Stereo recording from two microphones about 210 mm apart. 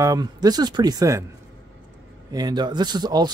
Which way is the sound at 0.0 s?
15° right (ahead or behind).